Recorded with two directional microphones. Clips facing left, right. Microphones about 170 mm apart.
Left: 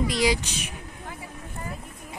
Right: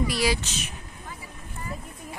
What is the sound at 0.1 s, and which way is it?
Speech, 15° left (ahead or behind).